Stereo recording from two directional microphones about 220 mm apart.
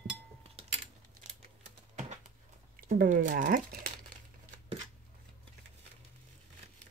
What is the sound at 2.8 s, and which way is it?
Speech, 40° right (ahead or behind).